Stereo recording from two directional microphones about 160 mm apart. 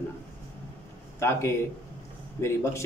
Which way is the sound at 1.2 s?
15° left (ahead or behind).